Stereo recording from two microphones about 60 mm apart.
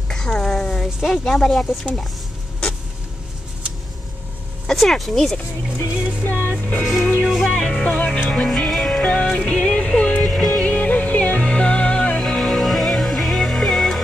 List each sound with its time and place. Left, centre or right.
0.1 s a sound: centre
1.0 s speech: centre
1.7 s speech: centre
4.6 s speech: centre
6.2 s music: left
7.2 s music: centre
7.9 s music: left
8.5 s music: centre